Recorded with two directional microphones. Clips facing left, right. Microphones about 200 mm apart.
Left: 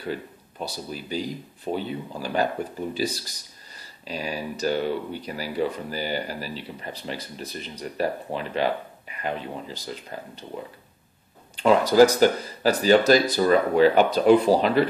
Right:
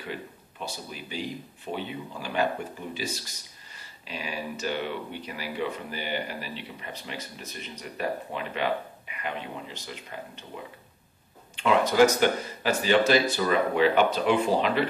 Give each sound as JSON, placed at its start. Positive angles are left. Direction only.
{"t": 0.1, "sound": "speech", "side_deg": 40}
{"t": 11.5, "sound": "speech", "side_deg": 35}